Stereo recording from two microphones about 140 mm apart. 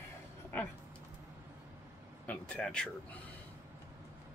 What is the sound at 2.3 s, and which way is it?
Speech, 5° left (ahead or behind).